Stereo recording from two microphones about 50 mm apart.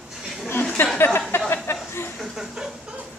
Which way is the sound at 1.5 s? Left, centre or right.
Left.